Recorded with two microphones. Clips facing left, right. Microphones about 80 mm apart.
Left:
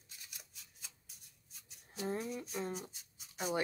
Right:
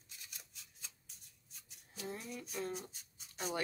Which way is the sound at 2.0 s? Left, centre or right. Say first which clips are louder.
Left 6 dB; left.